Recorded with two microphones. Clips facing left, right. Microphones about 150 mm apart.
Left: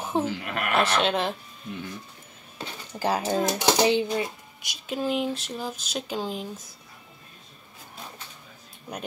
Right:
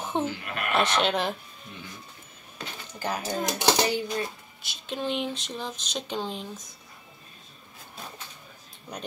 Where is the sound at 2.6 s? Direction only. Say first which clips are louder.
Left 5 dB; 30° left (ahead or behind).